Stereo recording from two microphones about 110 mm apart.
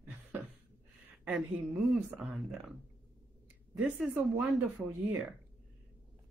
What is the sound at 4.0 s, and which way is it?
Speech, 10° right (ahead or behind).